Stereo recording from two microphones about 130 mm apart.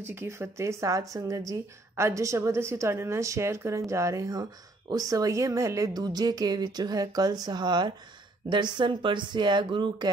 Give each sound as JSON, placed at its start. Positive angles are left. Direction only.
{"t": 0.0, "sound": "speech", "side_deg": -20}